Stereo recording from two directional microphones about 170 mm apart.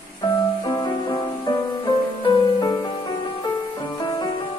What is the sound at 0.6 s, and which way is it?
Music, 20° left (ahead or behind).